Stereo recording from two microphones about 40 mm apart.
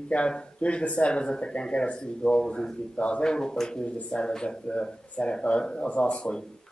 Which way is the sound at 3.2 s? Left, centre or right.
Centre.